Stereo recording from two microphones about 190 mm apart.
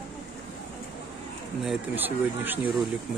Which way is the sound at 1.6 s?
5° right (ahead or behind).